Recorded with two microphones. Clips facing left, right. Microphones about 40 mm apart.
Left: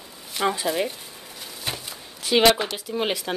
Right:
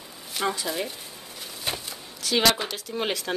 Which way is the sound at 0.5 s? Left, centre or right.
Centre.